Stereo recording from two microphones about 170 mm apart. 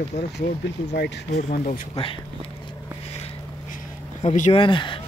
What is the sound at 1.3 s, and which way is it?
Speech, 45° left (ahead or behind).